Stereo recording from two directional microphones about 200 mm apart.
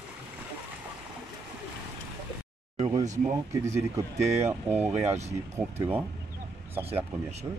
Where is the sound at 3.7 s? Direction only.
15° right (ahead or behind).